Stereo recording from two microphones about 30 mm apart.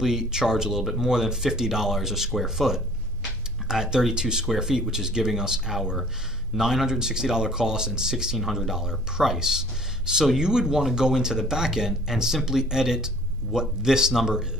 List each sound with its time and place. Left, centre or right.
0.0 s speech: centre
8.4 s speech: centre